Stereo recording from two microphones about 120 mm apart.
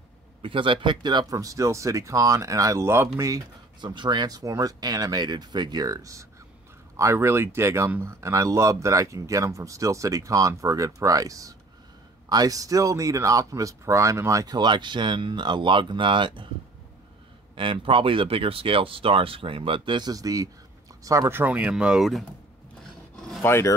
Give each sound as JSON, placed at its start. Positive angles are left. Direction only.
{"t": 0.4, "sound": "speech", "side_deg": -45}
{"t": 3.8, "sound": "speech", "side_deg": -40}
{"t": 17.6, "sound": "speech", "side_deg": -45}
{"t": 23.4, "sound": "speech", "side_deg": 20}